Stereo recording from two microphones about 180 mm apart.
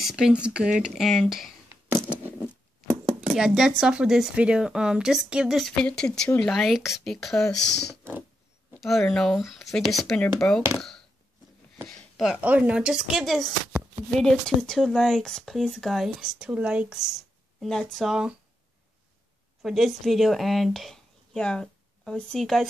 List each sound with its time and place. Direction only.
0.0 s speech: 5° right (ahead or behind)
3.2 s speech: 5° right (ahead or behind)
7.5 s speech: 75° left (ahead or behind)
8.8 s speech: centre (ahead or behind)
10.8 s a sound: centre (ahead or behind)
11.8 s speech: centre (ahead or behind)
19.6 s speech: centre (ahead or behind)